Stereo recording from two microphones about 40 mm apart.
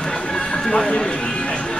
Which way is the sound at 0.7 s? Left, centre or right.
Left.